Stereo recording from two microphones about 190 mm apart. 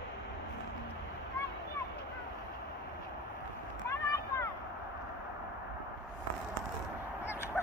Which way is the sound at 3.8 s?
15° left (ahead or behind).